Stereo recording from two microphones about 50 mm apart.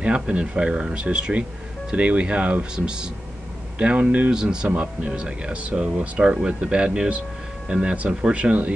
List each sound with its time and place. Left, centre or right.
0.0 s speech: right
4.3 s speech: centre
4.6 s speech: right